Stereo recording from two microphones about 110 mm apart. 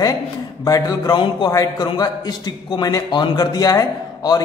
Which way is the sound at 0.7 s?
35° left (ahead or behind).